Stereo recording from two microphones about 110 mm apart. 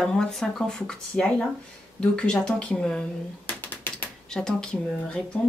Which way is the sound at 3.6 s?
15° left (ahead or behind).